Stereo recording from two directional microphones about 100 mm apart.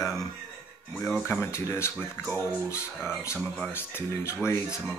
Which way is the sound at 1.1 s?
20° left (ahead or behind).